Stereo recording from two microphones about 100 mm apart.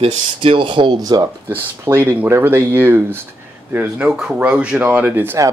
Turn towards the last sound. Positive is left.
turn(degrees=-20)  # may be behind; listen again after turning